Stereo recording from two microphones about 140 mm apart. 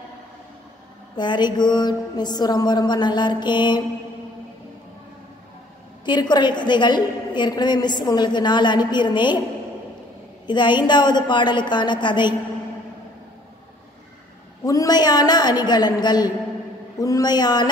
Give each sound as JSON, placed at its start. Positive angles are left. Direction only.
{"t": 1.1, "sound": "a woman's voice", "side_deg": 30}
{"t": 6.0, "sound": "a woman's voice", "side_deg": 30}
{"t": 10.4, "sound": "a woman's voice", "side_deg": 35}
{"t": 14.6, "sound": "a woman's voice", "side_deg": 25}